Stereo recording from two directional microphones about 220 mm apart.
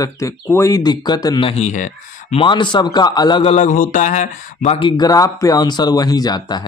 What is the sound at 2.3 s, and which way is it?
A man's voice, 20° left (ahead or behind).